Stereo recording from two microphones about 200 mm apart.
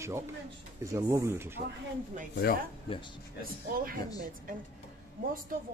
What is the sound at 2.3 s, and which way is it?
Speech, 50° left (ahead or behind).